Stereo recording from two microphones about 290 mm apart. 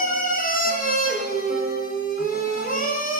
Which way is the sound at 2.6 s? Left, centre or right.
Left.